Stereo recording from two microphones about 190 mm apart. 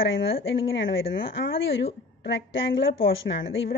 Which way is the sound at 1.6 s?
75° left (ahead or behind).